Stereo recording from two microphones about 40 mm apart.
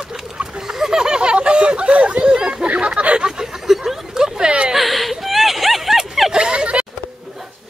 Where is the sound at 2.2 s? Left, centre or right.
Right.